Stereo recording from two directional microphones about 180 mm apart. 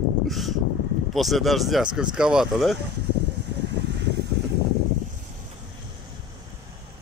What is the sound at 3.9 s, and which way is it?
Vehicle, 75° right (ahead or behind).